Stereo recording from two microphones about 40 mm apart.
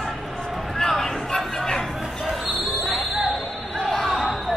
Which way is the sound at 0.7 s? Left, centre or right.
Centre.